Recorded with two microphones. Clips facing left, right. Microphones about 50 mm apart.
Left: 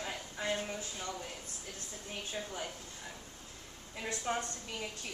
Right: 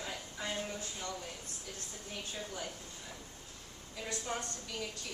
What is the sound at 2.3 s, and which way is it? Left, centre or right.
Speech, centre.